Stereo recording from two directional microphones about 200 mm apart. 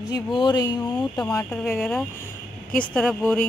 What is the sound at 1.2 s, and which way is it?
A woman's voice, 10° left (ahead or behind).